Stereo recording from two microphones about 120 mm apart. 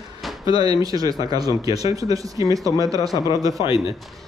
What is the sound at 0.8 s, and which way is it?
Speech, 35° right (ahead or behind).